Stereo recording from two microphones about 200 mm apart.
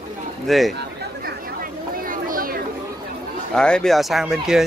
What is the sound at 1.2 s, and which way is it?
Chatter, 45° right (ahead or behind).